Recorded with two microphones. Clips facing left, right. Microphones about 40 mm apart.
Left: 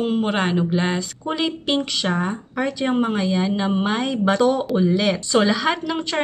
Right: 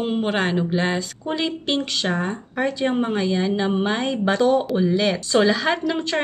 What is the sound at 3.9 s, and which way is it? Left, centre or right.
Speech, centre.